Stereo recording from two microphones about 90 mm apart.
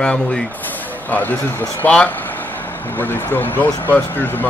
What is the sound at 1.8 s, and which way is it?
Speech, 15° left (ahead or behind).